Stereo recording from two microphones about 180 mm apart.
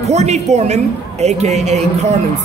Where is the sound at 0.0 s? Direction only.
40° right (ahead or behind).